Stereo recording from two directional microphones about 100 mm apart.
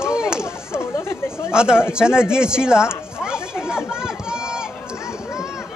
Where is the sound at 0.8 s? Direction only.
25° left (ahead or behind).